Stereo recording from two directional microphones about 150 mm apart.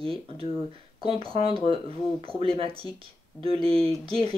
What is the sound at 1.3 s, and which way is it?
Speech, 40° right (ahead or behind).